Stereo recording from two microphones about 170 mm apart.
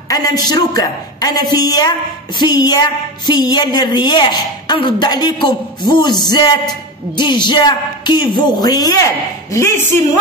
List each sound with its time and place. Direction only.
0.1 s a woman's voice: 25° left (ahead or behind)